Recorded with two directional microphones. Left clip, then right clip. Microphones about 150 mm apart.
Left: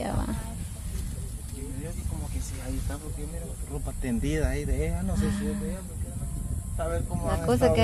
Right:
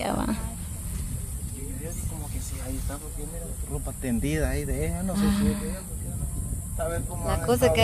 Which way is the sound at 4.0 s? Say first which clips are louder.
Right 1 dB; 25° right (ahead or behind).